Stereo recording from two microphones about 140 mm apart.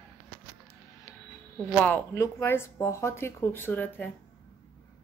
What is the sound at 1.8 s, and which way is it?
A woman's voice, 15° left (ahead or behind).